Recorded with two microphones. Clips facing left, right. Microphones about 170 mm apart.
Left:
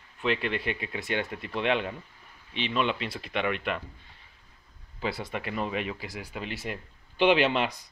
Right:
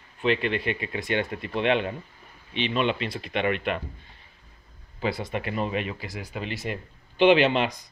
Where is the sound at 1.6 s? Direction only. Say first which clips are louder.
Right 3 dB; 65° right (ahead or behind).